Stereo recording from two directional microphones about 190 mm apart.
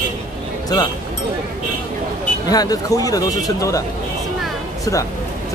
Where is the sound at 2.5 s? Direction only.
20° left (ahead or behind).